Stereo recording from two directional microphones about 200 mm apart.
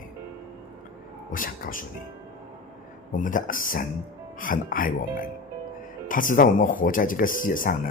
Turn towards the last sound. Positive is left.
turn(degrees=45)  # may be behind; listen again after turning